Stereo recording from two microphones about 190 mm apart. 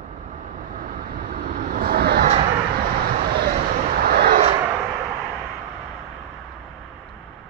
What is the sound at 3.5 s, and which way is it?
Vehicle, 55° right (ahead or behind).